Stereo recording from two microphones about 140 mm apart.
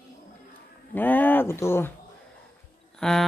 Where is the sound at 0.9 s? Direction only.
15° left (ahead or behind).